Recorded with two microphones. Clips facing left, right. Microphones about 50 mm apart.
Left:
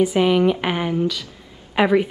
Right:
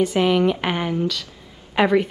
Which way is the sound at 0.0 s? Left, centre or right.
Centre.